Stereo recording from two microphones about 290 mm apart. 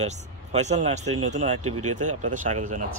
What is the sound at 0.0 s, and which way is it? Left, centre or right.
Speech, right.